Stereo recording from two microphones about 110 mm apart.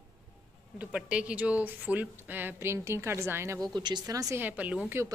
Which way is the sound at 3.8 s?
40° right (ahead or behind).